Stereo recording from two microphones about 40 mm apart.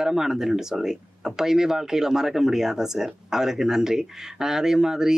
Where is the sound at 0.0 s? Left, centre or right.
Centre.